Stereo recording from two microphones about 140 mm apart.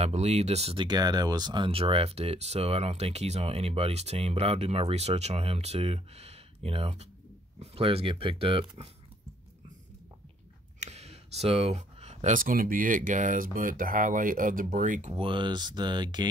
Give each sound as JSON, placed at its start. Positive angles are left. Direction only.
{"t": 0.0, "sound": "speech", "side_deg": -50}
{"t": 0.7, "sound": "speech", "side_deg": -30}
{"t": 10.8, "sound": "speech", "side_deg": -50}
{"t": 15.1, "sound": "speech", "side_deg": -35}